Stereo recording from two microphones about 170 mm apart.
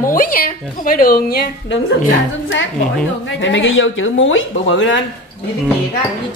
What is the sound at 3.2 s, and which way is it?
Speech, 90° left.